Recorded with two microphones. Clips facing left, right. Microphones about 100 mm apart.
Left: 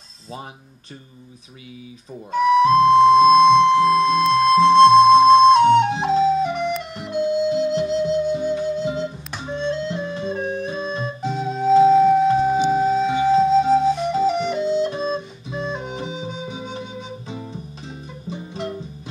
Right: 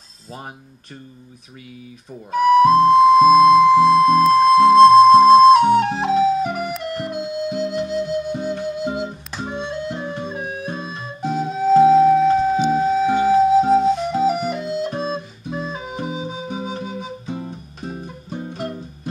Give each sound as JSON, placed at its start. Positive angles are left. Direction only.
{"t": 2.3, "sound": "music", "side_deg": -5}
{"t": 8.8, "sound": "music", "side_deg": -60}
{"t": 9.6, "sound": "music", "side_deg": -15}
{"t": 14.9, "sound": "music", "side_deg": -45}
{"t": 15.5, "sound": "organ", "side_deg": -5}
{"t": 16.1, "sound": "music", "side_deg": -5}
{"t": 17.3, "sound": "music", "side_deg": -50}